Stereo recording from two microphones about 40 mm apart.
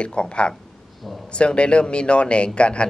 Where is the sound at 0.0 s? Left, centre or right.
Left.